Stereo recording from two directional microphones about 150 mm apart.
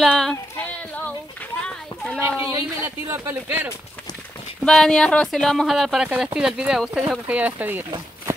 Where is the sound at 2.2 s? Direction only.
15° right (ahead or behind).